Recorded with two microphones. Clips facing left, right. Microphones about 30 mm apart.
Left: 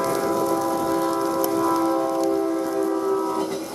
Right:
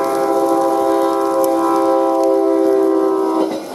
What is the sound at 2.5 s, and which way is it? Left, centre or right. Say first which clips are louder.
Music: right 10 dB; right.